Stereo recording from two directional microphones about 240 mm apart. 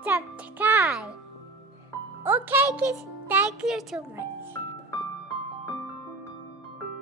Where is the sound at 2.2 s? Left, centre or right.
Centre.